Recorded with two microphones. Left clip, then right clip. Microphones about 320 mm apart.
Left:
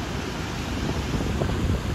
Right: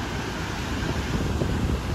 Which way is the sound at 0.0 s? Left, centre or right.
Centre.